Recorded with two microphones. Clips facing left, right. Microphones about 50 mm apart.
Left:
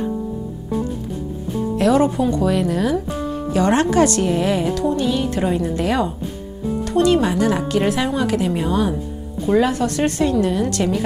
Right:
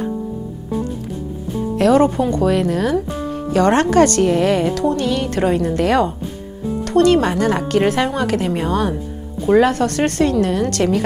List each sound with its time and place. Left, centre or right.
1.8 s speech: right